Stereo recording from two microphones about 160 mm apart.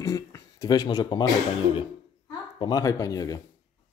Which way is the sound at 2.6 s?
20° left (ahead or behind).